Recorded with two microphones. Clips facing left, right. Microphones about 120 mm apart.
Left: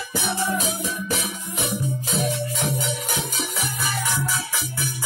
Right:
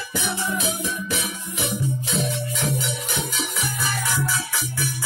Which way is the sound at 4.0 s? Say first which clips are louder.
Even; 20° left (ahead or behind).